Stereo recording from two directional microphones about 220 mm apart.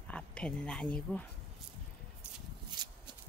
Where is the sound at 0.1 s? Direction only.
5° left (ahead or behind).